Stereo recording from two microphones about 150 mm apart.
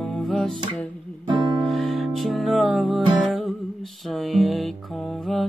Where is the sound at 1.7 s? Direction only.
Centre (ahead or behind).